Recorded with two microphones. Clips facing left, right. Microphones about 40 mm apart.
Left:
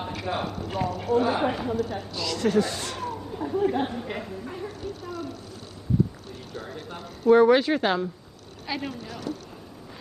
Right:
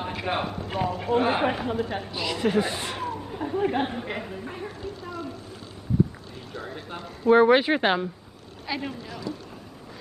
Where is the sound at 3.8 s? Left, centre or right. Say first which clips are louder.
Even; right.